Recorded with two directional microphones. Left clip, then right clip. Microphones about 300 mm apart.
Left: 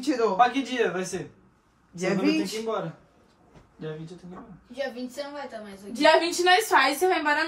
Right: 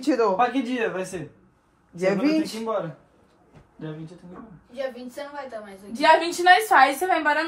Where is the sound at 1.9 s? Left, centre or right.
Centre.